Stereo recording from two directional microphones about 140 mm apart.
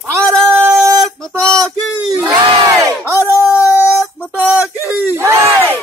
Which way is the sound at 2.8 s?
20° right (ahead or behind).